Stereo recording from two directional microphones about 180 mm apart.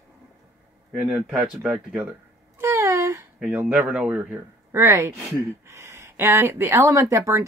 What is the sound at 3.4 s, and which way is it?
Speech, 5° right (ahead or behind).